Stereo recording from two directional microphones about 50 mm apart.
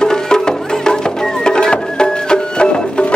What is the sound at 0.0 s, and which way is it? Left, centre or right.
Music, centre.